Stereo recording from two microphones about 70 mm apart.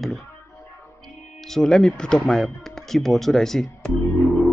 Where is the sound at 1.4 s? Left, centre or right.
Centre.